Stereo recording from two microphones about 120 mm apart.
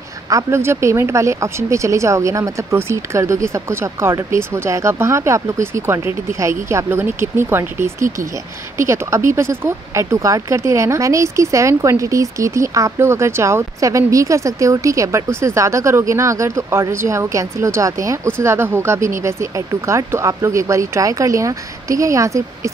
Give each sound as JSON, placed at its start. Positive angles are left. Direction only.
{"t": 0.3, "sound": "speech", "side_deg": -25}